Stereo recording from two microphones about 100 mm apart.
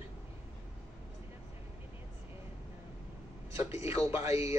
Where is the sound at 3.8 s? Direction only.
30° right (ahead or behind).